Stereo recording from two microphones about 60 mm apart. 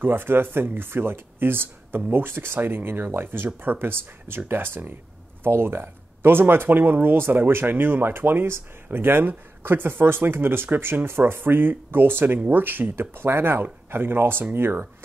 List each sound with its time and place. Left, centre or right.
0.0 s speech: right